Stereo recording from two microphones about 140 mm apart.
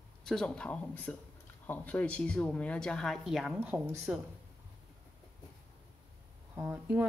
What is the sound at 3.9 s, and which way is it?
Speech, centre (ahead or behind).